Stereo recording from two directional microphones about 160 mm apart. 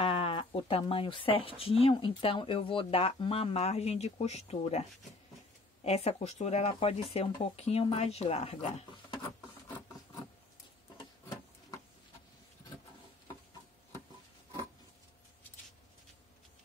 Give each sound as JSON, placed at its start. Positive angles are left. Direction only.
{"t": 0.0, "sound": "speech", "side_deg": 35}
{"t": 5.9, "sound": "speech", "side_deg": 40}